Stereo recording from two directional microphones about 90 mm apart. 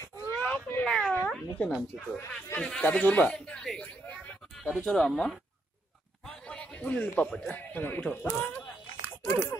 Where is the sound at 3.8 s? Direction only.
15° left (ahead or behind).